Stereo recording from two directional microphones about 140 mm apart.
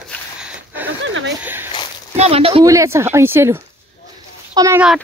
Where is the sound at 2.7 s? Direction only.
20° right (ahead or behind).